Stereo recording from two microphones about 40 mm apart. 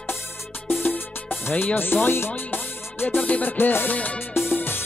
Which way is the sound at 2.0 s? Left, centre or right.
Left.